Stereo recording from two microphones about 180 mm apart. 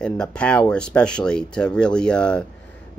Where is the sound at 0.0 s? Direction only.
5° left (ahead or behind).